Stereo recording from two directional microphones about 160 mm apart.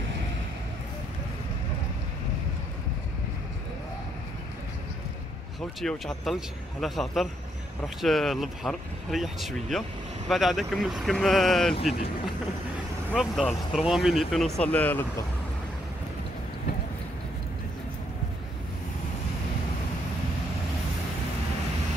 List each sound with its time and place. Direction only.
5.8 s speech: centre (ahead or behind)
13.1 s speech: centre (ahead or behind)